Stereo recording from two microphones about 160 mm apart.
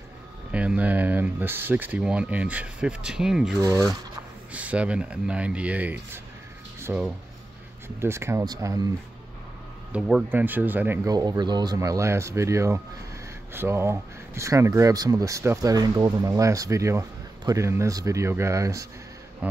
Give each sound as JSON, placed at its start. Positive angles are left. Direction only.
{"t": 0.5, "sound": "speech", "side_deg": -10}
{"t": 9.9, "sound": "speech", "side_deg": -5}
{"t": 11.1, "sound": "speech", "side_deg": -25}